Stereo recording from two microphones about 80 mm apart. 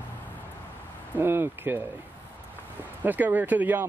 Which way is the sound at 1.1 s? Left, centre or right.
Right.